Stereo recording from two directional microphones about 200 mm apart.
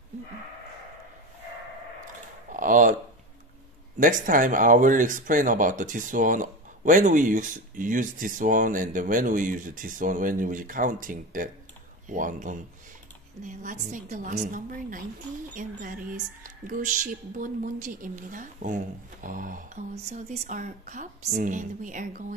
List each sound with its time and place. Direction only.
2.5 s speech: 40° right (ahead or behind)
4.0 s speech: 45° right (ahead or behind)